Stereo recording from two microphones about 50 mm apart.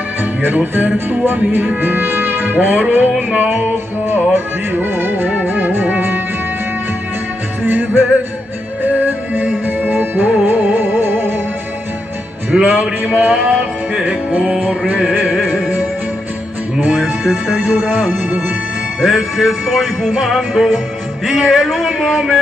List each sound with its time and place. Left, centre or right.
0.2 s music: right
7.6 s music: right
12.5 s music: centre
13.0 s a sound: right
17.2 s music: centre
17.9 s a sound: right
18.9 s music: centre